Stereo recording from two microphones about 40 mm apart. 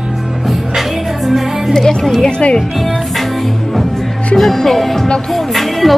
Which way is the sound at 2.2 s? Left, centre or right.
Left.